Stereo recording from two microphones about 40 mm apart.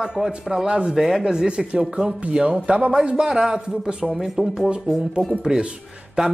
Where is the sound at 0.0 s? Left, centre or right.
Centre.